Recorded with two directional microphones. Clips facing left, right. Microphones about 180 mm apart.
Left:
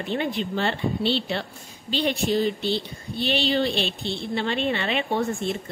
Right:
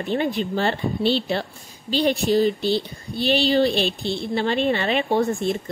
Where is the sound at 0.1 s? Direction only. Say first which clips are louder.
Right 3 dB; 40° right (ahead or behind).